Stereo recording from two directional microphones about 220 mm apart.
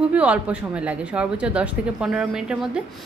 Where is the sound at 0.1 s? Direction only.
5° right (ahead or behind).